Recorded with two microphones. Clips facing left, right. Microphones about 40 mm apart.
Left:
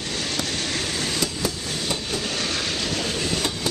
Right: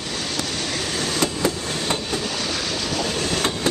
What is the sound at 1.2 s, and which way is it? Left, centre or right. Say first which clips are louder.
Vehicle: right 4 dB; right.